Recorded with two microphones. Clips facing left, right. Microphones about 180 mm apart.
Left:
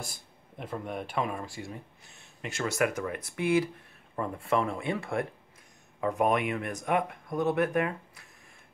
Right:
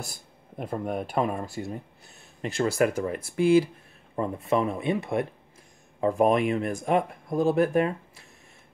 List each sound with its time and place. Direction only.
0.1 s speech: 45° right (ahead or behind); by 8.3 s 30° right (ahead or behind)